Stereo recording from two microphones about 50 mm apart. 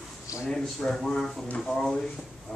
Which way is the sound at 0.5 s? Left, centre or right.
Centre.